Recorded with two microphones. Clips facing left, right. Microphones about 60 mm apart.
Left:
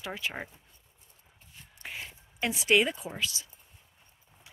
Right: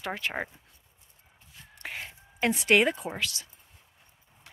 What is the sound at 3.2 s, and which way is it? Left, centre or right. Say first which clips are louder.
Speech: right 1 dB; right.